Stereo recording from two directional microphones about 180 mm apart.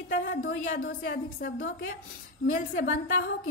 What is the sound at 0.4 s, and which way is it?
A woman's voice, 75° left (ahead or behind).